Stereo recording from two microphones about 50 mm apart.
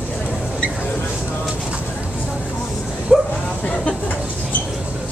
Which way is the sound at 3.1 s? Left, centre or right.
Centre.